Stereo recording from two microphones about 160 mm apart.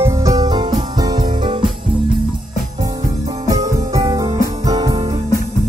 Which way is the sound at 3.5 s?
20° right (ahead or behind).